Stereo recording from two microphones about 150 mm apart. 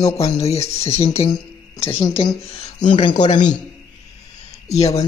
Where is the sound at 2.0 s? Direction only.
30° left (ahead or behind).